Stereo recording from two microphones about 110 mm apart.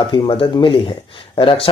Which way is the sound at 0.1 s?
45° left (ahead or behind).